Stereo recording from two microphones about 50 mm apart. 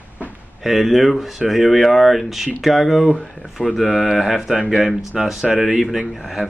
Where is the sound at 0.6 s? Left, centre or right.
Centre.